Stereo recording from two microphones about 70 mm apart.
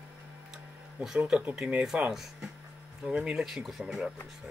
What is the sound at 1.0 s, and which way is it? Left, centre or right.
Speech, centre.